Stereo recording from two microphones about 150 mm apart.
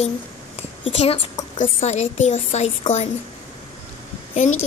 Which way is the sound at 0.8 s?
40° left (ahead or behind).